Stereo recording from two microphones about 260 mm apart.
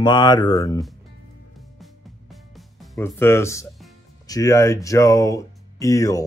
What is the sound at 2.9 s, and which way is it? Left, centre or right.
Speech, centre.